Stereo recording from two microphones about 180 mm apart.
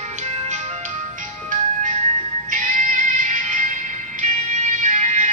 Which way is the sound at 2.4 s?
45° right (ahead or behind).